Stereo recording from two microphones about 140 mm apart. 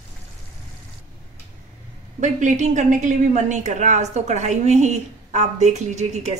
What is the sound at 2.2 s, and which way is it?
Speech, 60° right (ahead or behind).